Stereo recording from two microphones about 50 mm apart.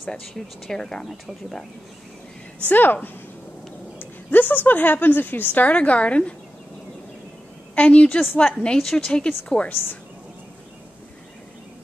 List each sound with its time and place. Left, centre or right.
0.1 s speech: centre
2.7 s a woman's voice: left
7.7 s a woman's voice: left